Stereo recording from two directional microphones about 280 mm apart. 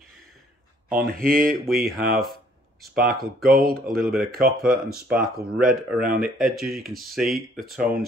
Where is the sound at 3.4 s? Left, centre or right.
Right.